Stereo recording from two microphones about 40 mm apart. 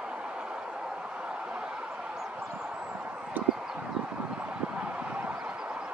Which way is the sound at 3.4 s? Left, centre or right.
Right.